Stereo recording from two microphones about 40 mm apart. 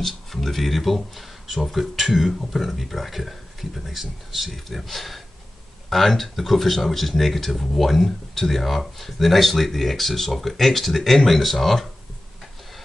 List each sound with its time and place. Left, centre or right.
0.0 s speech: centre